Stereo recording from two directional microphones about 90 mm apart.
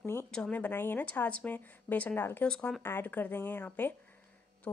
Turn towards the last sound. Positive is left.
turn(degrees=15)  # may be behind; listen again after turning